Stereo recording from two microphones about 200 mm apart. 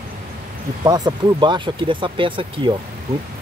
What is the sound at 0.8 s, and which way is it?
Speech, 20° right (ahead or behind).